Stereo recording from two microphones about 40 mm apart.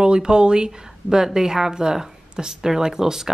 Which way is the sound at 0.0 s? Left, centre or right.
Right.